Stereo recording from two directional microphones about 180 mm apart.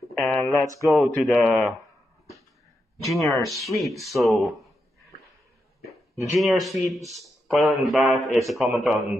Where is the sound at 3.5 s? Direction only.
15° left (ahead or behind).